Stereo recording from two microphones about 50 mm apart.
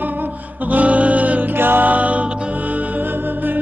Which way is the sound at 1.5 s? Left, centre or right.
Right.